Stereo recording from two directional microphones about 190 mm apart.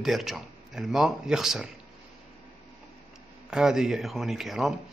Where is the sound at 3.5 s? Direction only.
5° right (ahead or behind).